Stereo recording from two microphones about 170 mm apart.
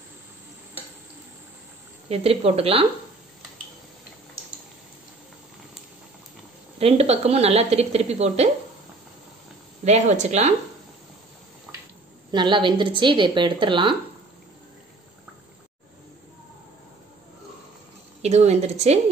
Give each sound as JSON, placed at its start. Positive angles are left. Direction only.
{"t": 2.0, "sound": "a woman's voice", "side_deg": -35}
{"t": 6.8, "sound": "a woman's voice", "side_deg": -35}
{"t": 9.8, "sound": "a woman's voice", "side_deg": -40}
{"t": 12.3, "sound": "a woman's voice", "side_deg": -25}
{"t": 18.2, "sound": "a woman's voice", "side_deg": -40}